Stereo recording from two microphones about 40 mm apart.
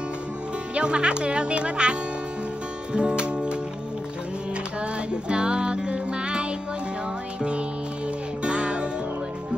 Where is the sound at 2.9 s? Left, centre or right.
Right.